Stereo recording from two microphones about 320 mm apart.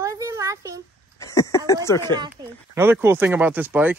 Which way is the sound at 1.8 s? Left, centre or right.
Centre.